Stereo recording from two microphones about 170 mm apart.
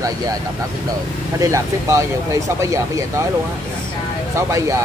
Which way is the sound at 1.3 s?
20° right (ahead or behind).